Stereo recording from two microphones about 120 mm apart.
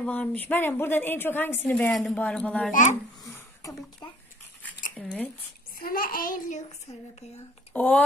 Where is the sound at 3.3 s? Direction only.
25° left (ahead or behind).